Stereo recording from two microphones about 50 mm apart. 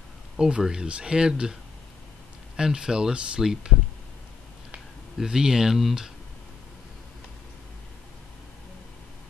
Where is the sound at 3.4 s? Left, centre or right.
Centre.